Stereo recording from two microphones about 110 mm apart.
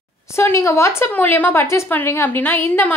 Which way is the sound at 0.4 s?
25° left (ahead or behind).